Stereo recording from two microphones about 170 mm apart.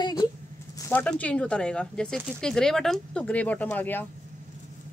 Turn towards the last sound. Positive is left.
turn(degrees=10)  # may be behind; listen again after turning